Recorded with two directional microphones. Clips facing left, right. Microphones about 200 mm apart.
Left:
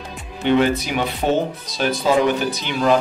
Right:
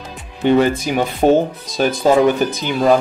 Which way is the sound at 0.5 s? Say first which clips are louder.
Right 3 dB; 45° right (ahead or behind).